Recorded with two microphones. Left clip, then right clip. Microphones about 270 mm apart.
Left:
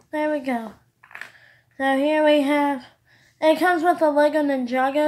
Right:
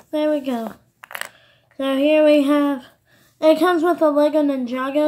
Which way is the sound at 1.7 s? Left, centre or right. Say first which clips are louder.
Right 1 dB; centre.